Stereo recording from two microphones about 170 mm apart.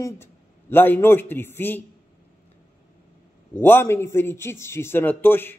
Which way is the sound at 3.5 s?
10° left (ahead or behind).